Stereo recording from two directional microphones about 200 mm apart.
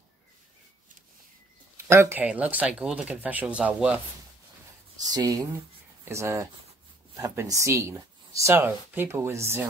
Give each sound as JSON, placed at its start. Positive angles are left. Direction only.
{"t": 1.9, "sound": "speech", "side_deg": -10}
{"t": 5.0, "sound": "speech", "side_deg": -20}